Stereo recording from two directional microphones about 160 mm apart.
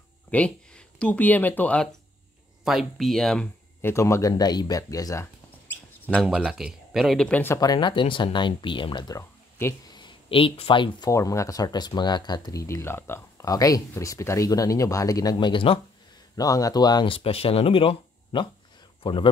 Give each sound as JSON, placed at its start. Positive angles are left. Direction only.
{"t": 0.3, "sound": "speech", "side_deg": 5}
{"t": 2.6, "sound": "speech", "side_deg": 0}
{"t": 3.8, "sound": "speech", "side_deg": 20}
{"t": 6.2, "sound": "speech", "side_deg": -5}
{"t": 9.6, "sound": "speech", "side_deg": 15}
{"t": 9.9, "sound": "speech", "side_deg": 30}
{"t": 11.1, "sound": "speech", "side_deg": 20}
{"t": 16.3, "sound": "speech", "side_deg": 20}